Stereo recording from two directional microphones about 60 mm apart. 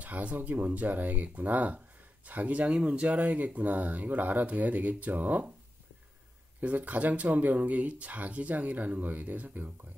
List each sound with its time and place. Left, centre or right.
0.0 s speech: right
6.6 s speech: right